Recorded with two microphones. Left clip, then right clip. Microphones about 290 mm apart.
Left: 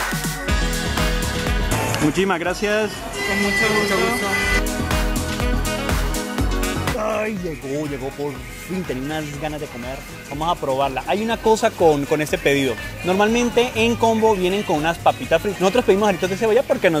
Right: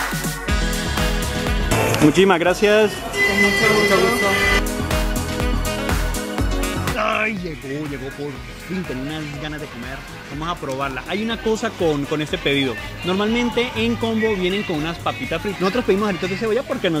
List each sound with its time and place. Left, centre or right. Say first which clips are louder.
0.1 s music: even; centre
7.0 s music: right 4 dB; left
10.8 s speech: left 4 dB; left